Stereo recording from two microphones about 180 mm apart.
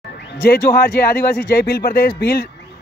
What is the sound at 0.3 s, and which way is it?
A man's voice, 60° left (ahead or behind).